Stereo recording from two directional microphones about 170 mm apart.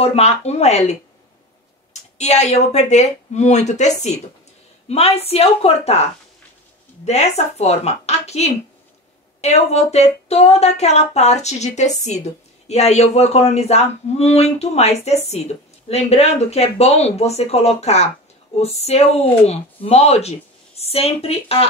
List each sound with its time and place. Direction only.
0.0 s speech: 40° left (ahead or behind)
2.1 s a woman's voice: 40° left (ahead or behind)
7.1 s speech: 40° left (ahead or behind)